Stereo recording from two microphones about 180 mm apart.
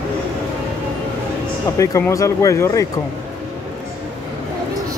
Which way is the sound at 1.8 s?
15° left (ahead or behind).